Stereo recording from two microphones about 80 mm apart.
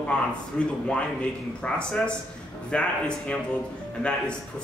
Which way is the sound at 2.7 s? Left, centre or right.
Centre.